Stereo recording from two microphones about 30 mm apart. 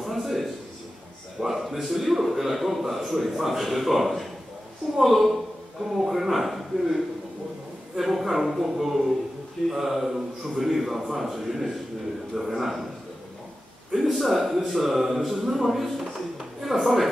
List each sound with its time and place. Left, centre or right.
0.0 s a sound: centre
1.4 s a man's voice: centre
13.9 s a man's voice: centre